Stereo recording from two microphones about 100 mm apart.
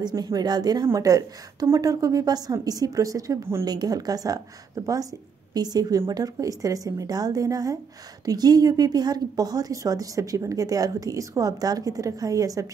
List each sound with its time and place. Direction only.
0.0 s a woman's voice: 40° right (ahead or behind)